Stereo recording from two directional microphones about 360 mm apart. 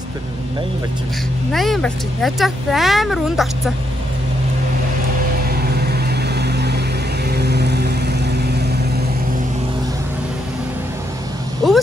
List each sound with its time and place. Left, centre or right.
1.5 s speech: centre
5.5 s vehicle: right
11.6 s vehicle: centre